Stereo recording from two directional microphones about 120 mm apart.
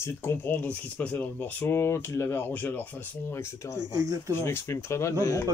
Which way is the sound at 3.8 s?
25° right (ahead or behind).